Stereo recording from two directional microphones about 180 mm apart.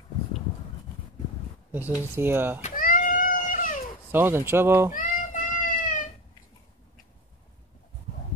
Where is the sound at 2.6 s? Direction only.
45° left (ahead or behind).